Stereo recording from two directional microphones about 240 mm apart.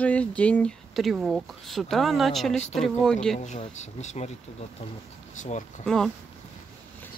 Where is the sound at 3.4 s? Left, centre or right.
Left.